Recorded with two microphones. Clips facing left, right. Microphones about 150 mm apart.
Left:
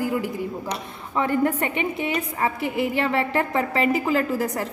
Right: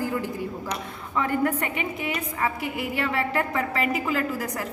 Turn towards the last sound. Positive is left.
turn(degrees=30)  # may be behind; listen again after turning